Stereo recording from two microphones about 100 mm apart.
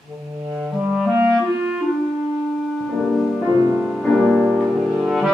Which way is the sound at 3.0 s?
10° right (ahead or behind).